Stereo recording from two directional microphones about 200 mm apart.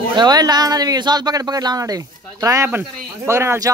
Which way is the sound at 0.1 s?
20° right (ahead or behind).